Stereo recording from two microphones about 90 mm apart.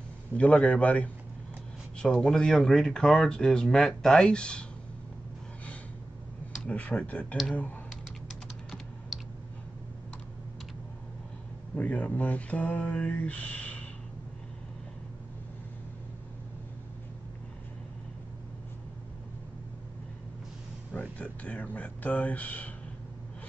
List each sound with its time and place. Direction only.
0.4 s speech: 15° left (ahead or behind)
2.0 s speech: 5° left (ahead or behind)
6.7 s speech: 15° left (ahead or behind)
9.1 s clicking: centre (ahead or behind)
11.7 s speech: 15° left (ahead or behind)
21.2 s speech: 15° left (ahead or behind)